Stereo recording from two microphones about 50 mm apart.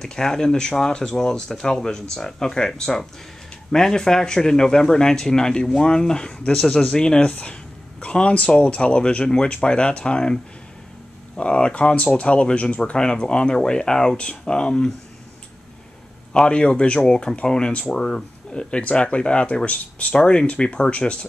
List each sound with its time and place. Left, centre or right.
0.0 s a man's voice: centre
16.3 s speech: centre
18.5 s speech: left